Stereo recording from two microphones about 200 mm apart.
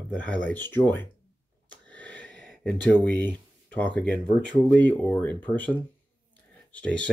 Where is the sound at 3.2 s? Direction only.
10° left (ahead or behind).